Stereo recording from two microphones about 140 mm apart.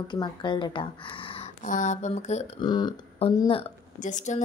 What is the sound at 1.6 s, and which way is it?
Speech, 65° left (ahead or behind).